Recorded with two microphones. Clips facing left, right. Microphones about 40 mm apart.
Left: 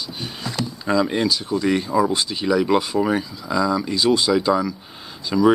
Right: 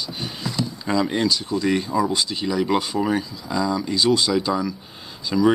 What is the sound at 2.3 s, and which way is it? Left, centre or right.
Speech, centre.